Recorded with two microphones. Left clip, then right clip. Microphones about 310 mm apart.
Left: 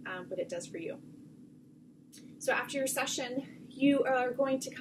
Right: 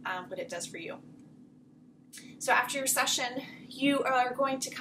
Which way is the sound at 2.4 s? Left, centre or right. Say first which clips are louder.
Right 4 dB; centre.